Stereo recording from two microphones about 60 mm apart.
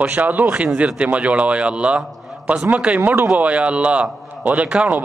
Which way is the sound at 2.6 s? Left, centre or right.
Right.